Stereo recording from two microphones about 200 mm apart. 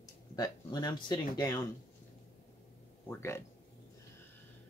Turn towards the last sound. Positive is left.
turn(degrees=10)  # may be behind; listen again after turning